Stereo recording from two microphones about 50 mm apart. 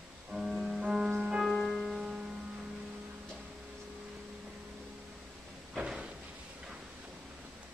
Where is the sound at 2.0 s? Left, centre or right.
Centre.